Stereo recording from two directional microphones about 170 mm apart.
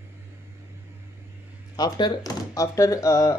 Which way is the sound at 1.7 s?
25° left (ahead or behind).